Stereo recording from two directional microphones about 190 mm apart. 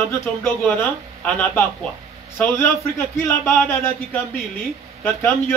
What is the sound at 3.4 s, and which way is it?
Speech, 10° left (ahead or behind).